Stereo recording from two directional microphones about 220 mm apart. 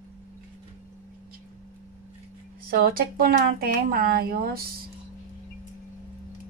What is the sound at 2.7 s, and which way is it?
Speech, 45° right (ahead or behind).